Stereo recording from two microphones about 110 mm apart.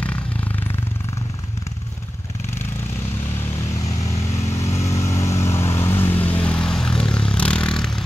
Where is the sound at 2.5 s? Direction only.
20° left (ahead or behind).